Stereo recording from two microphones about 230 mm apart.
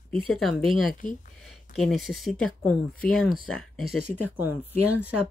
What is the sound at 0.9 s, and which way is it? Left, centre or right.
Speech, left.